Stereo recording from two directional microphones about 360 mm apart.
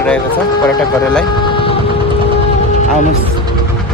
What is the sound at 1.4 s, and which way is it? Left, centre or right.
Vehicle, centre.